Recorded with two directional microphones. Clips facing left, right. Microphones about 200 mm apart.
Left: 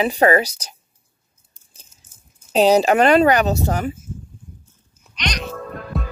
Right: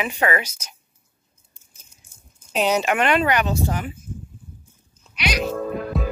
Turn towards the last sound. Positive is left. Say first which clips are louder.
# right 4 dB
turn(degrees=0)  # may be behind; listen again after turning